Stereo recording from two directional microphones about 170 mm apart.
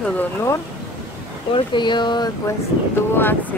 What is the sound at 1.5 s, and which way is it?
Speech, 25° left (ahead or behind).